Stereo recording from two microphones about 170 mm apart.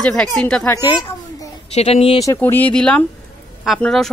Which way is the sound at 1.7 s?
35° left (ahead or behind).